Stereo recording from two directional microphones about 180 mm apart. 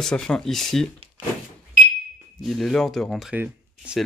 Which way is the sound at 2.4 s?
Centre (ahead or behind).